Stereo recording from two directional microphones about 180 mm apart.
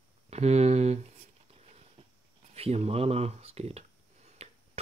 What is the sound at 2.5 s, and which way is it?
Speech, 35° right (ahead or behind).